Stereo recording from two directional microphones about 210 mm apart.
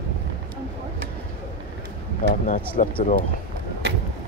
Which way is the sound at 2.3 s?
40° left (ahead or behind).